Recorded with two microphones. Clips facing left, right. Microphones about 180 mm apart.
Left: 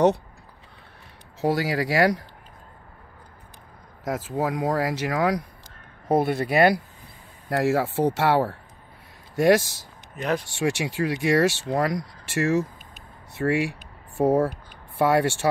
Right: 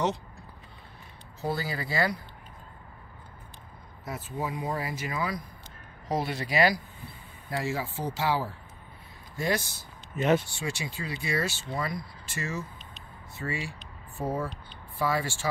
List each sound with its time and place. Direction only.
1.4 s speech: 90° left
4.0 s speech: 90° left
6.0 s speech: 55° left (ahead or behind)
7.4 s speech: 80° left
10.1 s speech: 5° right (ahead or behind)
10.5 s speech: 85° left
14.1 s speech: 85° left
15.0 s speech: 75° left (ahead or behind)